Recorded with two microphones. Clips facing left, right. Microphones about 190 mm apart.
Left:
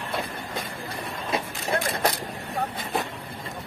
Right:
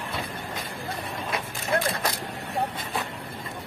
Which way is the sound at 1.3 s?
30° left (ahead or behind).